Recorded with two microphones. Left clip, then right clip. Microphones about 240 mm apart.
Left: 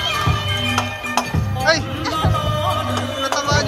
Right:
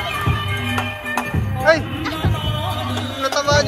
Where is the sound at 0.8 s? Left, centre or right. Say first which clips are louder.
Left 2 dB; centre.